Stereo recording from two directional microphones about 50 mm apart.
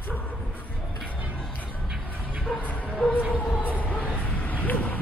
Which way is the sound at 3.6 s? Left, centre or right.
Left.